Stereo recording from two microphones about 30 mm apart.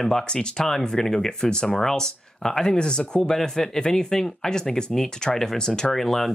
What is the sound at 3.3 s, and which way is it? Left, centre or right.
Speech, centre.